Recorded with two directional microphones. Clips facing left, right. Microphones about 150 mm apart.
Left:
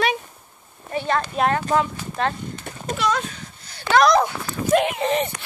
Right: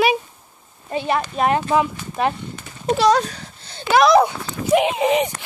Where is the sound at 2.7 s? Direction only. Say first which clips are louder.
Left 6 dB; 55° left (ahead or behind).